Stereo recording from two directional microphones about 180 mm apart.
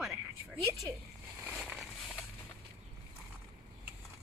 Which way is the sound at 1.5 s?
Centre (ahead or behind).